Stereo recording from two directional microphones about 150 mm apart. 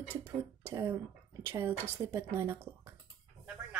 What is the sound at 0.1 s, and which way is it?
Speech, 15° right (ahead or behind).